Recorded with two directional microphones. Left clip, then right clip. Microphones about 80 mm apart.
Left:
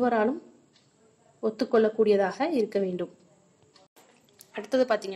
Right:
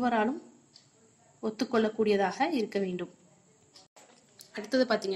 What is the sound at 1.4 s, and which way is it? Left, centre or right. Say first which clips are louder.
A woman's voice: left 6 dB; centre.